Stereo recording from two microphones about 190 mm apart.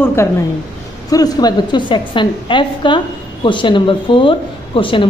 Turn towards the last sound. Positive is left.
turn(degrees=25)  # may be behind; listen again after turning